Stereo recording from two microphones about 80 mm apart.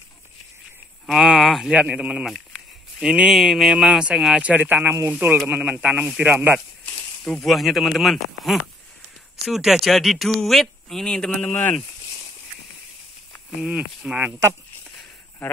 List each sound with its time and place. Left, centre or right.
1.0 s a sound: centre
1.7 s speech: centre
7.2 s speech: centre
13.6 s speech: centre